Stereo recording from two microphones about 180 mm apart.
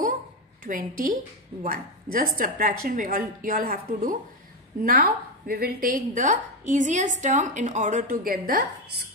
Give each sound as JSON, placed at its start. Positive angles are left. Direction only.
{"t": 0.7, "sound": "a woman's voice", "side_deg": -50}